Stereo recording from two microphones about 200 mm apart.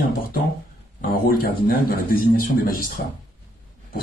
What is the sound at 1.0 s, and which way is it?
A man's voice, 45° left (ahead or behind).